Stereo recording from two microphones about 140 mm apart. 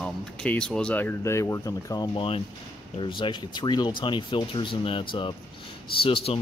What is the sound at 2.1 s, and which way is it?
Speech, 45° left (ahead or behind).